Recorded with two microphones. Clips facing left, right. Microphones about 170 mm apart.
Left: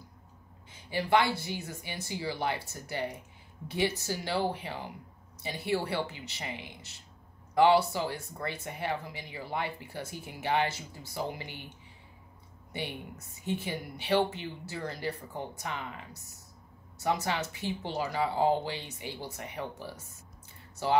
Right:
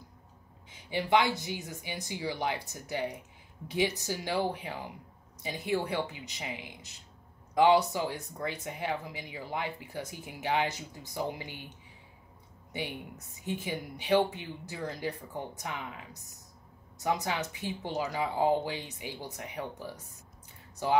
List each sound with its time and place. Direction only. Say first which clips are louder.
0.8 s speech: even; 15° right (ahead or behind)
12.7 s speech: even; 15° right (ahead or behind)